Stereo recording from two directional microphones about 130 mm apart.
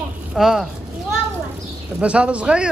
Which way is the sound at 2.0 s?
10° right (ahead or behind).